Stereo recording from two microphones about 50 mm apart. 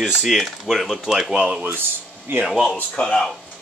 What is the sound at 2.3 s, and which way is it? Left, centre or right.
Speech, right.